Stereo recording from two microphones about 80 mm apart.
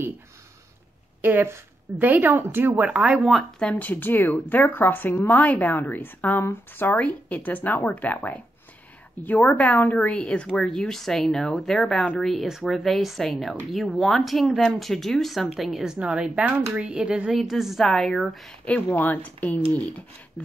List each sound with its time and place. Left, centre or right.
1.2 s a woman's voice: right
3.5 s a woman's voice: centre
18.9 s a woman's voice: centre